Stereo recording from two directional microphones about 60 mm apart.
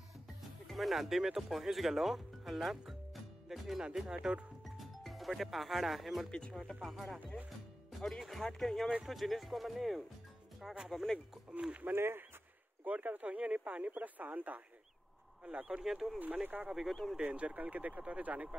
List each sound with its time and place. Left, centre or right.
0.4 s speech: centre
4.6 s music: centre
6.8 s speech: centre
11.9 s speech: right
12.8 s speech: right
15.6 s speech: centre
16.2 s speech: right
16.6 s speech: centre
17.2 s speech: right